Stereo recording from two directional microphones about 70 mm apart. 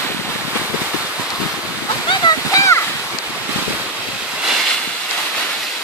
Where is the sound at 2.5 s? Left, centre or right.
Left.